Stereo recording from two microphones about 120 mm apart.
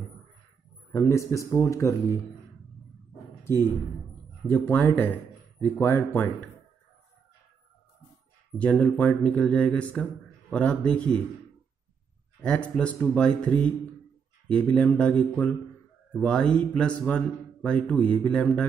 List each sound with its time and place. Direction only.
0.9 s a man's voice: 25° left (ahead or behind)
3.4 s speech: 20° left (ahead or behind)
8.5 s speech: 10° left (ahead or behind)
12.4 s speech: 10° left (ahead or behind)